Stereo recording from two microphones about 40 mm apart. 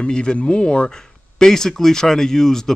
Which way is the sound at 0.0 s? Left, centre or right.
Left.